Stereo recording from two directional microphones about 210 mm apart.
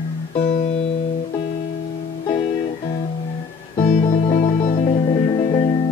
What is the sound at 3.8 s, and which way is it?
Music, 35° left (ahead or behind).